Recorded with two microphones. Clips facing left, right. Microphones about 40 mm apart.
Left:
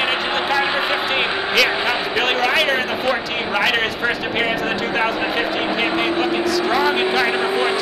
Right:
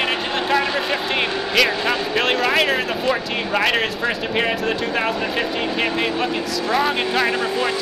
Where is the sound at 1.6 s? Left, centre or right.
Centre.